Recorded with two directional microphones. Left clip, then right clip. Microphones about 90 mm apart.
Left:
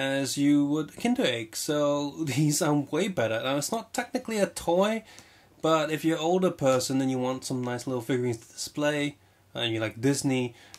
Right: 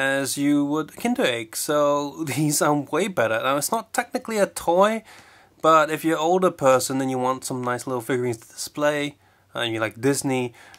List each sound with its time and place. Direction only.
0.0 s speech: 35° right (ahead or behind)